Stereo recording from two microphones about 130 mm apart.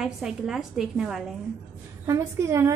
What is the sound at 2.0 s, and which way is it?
Speech, 20° right (ahead or behind).